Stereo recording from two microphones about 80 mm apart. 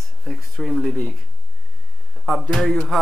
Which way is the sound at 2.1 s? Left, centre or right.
Centre.